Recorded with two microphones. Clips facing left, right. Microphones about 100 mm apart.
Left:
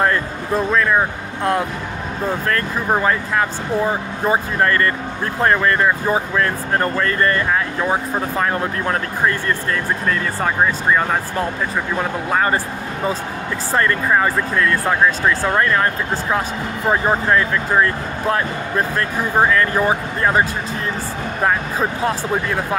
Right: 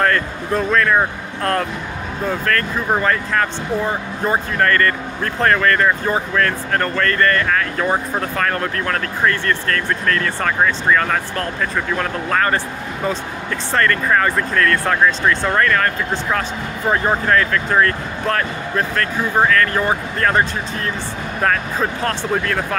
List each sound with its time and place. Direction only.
0.0 s speech: 15° left (ahead or behind)
7.8 s speech: 5° left (ahead or behind)
8.4 s speech: 15° left (ahead or behind)
13.7 s speech: 15° left (ahead or behind)